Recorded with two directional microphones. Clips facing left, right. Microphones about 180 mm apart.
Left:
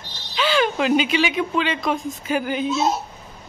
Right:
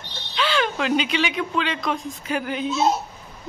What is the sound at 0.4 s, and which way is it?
Speech, 5° left (ahead or behind).